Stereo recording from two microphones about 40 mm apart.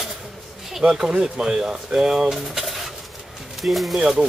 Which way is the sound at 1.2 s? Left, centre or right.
Centre.